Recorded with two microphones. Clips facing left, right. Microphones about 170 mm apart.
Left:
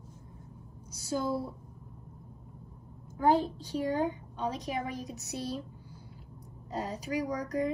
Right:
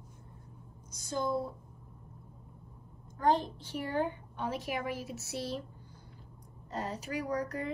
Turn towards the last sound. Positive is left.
turn(degrees=15)  # may be behind; listen again after turning